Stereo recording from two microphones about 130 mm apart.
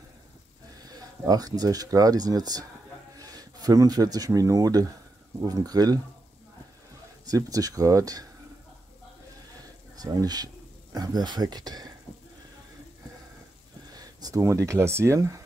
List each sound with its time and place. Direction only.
0.8 s speech: 30° right (ahead or behind)
7.2 s speech: 25° right (ahead or behind)
9.9 s speech: 30° right (ahead or behind)
13.9 s speech: 25° right (ahead or behind)